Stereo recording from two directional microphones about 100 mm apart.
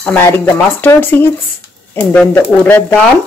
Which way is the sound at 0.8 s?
20° left (ahead or behind).